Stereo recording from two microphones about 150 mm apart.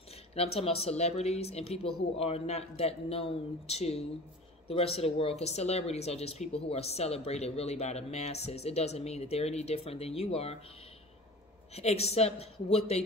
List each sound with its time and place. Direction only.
0.3 s a woman's voice: 40° left (ahead or behind)
11.7 s a woman's voice: 45° left (ahead or behind)